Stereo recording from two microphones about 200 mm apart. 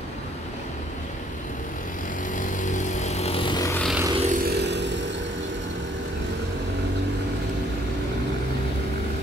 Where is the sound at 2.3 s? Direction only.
40° left (ahead or behind); by 3.8 s 15° left (ahead or behind).